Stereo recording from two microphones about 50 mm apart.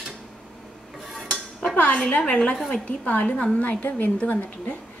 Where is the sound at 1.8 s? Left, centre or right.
Left.